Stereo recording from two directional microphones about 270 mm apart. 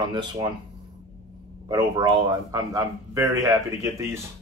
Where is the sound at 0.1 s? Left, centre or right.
Centre.